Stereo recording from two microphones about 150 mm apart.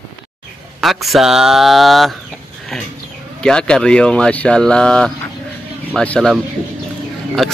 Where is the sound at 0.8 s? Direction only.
Centre (ahead or behind).